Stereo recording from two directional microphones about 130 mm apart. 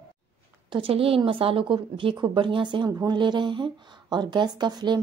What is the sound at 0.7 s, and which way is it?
A woman's voice, 40° right (ahead or behind).